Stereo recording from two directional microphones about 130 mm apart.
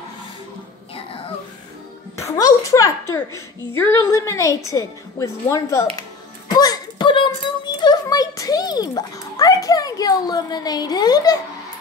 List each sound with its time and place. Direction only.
2.1 s a woman's voice: 25° left (ahead or behind)